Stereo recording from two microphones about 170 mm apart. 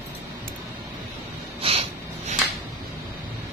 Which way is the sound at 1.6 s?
35° right (ahead or behind).